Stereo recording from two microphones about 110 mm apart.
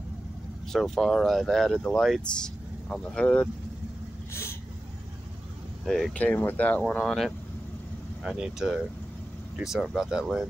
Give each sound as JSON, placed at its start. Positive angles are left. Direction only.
{"t": 0.7, "sound": "speech", "side_deg": 0}
{"t": 4.3, "sound": "vehicle", "side_deg": 25}
{"t": 5.9, "sound": "speech", "side_deg": 0}
{"t": 6.1, "sound": "speech", "side_deg": 15}